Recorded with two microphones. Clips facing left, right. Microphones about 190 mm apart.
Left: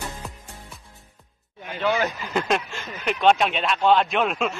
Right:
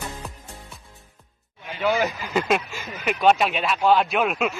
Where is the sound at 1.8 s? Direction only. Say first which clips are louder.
Right 1 dB; 5° right (ahead or behind).